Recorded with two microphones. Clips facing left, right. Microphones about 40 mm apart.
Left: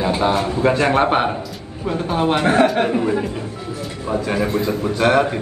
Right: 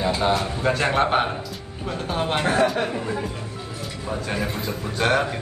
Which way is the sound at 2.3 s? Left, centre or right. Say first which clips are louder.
Left 5 dB; left.